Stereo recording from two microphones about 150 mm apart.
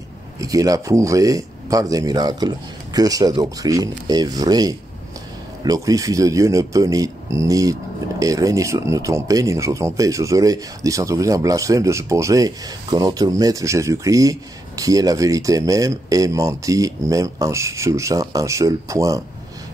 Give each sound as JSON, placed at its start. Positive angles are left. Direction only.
{"t": 0.4, "sound": "speech", "side_deg": -25}